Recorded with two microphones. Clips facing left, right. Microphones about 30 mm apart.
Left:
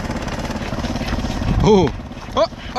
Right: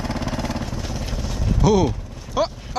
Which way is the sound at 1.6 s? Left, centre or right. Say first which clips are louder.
Left 4 dB; left.